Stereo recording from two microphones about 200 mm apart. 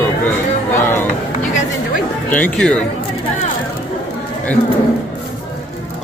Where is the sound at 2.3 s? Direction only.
5° left (ahead or behind).